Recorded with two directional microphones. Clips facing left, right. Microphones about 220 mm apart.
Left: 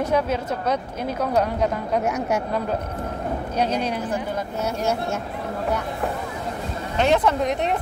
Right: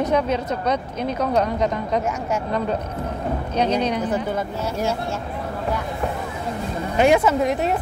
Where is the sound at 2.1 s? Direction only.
65° left (ahead or behind).